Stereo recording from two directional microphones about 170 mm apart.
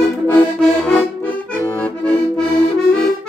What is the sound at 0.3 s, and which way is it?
Music, 10° left (ahead or behind).